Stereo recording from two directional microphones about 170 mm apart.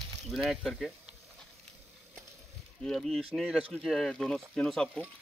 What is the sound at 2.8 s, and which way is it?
Speech, centre (ahead or behind).